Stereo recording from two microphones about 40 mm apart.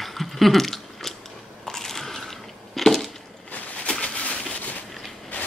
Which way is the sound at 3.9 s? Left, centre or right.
Left.